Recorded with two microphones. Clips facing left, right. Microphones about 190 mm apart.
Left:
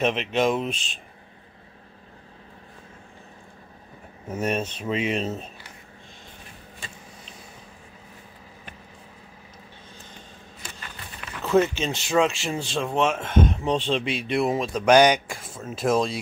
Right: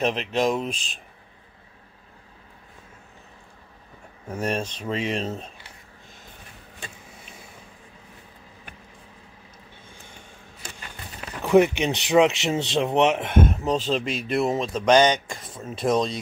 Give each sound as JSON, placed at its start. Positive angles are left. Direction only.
{"t": 0.0, "sound": "speech", "side_deg": 0}
{"t": 4.3, "sound": "speech", "side_deg": 5}
{"t": 11.4, "sound": "speech", "side_deg": -15}
{"t": 13.5, "sound": "speech", "side_deg": -5}